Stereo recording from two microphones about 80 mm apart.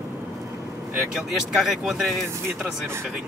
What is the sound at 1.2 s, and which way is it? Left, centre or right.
Speech, centre.